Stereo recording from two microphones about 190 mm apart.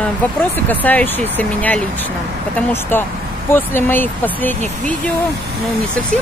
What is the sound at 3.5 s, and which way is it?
Speech, 10° left (ahead or behind).